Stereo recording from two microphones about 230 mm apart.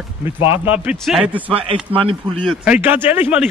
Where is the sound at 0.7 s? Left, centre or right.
Centre.